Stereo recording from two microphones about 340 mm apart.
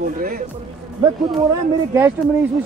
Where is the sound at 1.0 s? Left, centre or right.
Centre.